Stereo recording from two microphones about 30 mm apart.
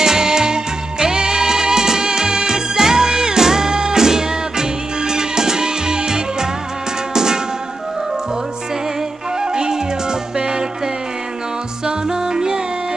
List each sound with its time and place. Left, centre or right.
0.0 s music: centre
9.4 s music: right
11.8 s music: right